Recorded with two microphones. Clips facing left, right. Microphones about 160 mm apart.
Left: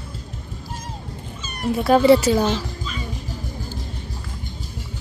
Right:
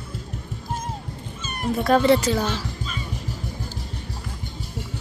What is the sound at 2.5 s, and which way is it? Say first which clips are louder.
Music: left 3 dB; 45° right (ahead or behind).